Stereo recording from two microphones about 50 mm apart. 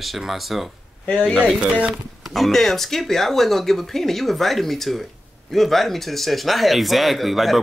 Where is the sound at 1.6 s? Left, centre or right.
Right.